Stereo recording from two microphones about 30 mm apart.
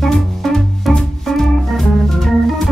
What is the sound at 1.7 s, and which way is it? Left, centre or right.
Organ, centre.